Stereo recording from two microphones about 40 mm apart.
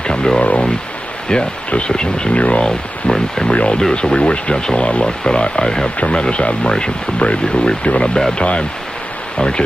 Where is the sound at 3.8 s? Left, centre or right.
Centre.